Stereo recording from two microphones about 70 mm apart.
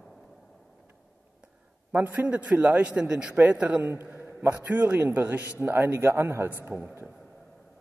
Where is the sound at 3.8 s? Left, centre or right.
Right.